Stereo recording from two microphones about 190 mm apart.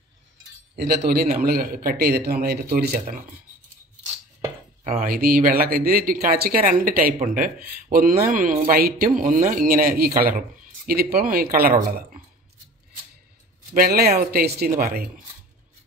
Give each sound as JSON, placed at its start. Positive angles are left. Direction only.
{"t": 0.7, "sound": "a man's voice", "side_deg": -55}
{"t": 4.8, "sound": "speech", "side_deg": -50}
{"t": 13.7, "sound": "speech", "side_deg": -55}